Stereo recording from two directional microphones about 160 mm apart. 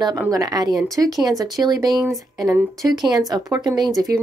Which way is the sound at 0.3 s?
25° right (ahead or behind).